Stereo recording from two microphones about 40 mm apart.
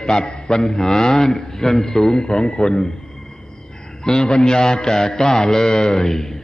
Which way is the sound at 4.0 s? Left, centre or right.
Centre.